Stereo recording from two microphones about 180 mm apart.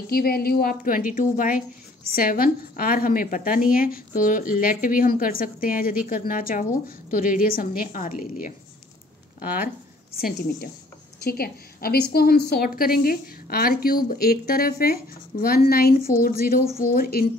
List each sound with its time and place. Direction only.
0.1 s a woman's voice: 55° left (ahead or behind)
10.1 s a woman's voice: 55° left (ahead or behind)